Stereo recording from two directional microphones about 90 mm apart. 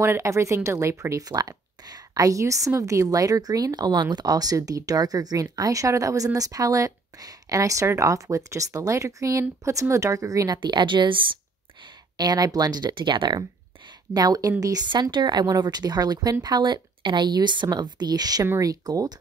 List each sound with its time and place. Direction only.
0.0 s a woman's voice: 30° right (ahead or behind)
10.6 s a woman's voice: 55° right (ahead or behind)
11.8 s speech: 50° right (ahead or behind)
13.8 s a woman's voice: 45° right (ahead or behind)
14.9 s speech: 60° right (ahead or behind)